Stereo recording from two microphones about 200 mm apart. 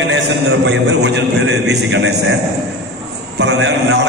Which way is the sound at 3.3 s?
60° right (ahead or behind).